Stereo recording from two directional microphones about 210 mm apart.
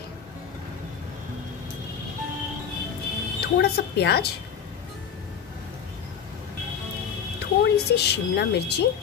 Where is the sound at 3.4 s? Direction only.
50° left (ahead or behind).